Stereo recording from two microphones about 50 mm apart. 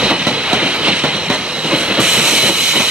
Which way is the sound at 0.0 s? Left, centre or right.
Centre.